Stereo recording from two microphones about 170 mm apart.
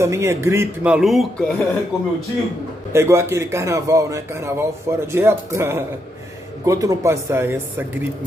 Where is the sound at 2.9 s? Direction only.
15° right (ahead or behind).